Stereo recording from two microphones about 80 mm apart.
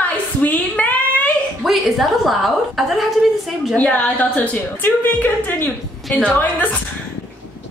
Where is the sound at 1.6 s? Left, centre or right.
Centre.